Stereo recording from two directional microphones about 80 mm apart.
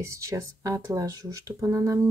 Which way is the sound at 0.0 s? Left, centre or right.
Right.